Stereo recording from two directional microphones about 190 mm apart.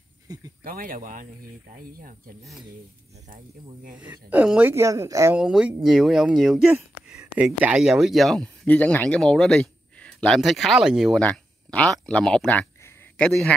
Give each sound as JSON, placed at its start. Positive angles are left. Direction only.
{"t": 0.7, "sound": "speech", "side_deg": -50}
{"t": 4.0, "sound": "speech", "side_deg": -10}
{"t": 5.4, "sound": "speech", "side_deg": -5}